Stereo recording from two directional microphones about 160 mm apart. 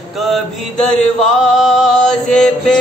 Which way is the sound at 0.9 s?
5° left (ahead or behind).